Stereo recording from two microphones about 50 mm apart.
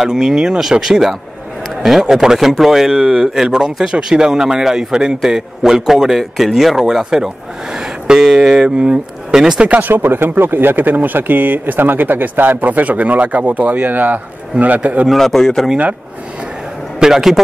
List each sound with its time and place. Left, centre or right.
0.0 s a man's voice: centre
9.6 s speech: right
9.8 s speech: right
15.0 s a man's voice: centre
17.0 s a man's voice: centre